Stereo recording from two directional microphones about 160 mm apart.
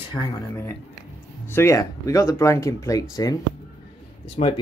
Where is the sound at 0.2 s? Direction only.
10° left (ahead or behind).